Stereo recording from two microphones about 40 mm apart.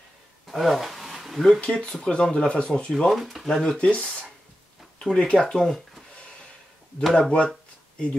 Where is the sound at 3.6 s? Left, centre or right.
Left.